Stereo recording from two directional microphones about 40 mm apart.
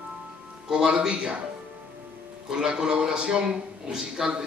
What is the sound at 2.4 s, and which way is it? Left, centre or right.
A man's voice, centre.